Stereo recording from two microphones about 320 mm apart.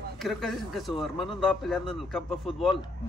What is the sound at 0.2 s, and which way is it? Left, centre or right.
Speech, centre.